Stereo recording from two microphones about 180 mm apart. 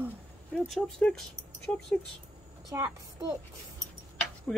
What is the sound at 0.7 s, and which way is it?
Speech, centre (ahead or behind).